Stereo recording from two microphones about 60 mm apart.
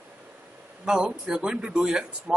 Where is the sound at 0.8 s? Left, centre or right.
Centre.